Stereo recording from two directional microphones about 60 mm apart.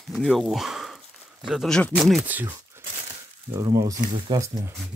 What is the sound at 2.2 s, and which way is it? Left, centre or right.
Speech, right.